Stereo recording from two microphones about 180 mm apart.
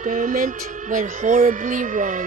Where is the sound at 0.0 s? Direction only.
45° right (ahead or behind).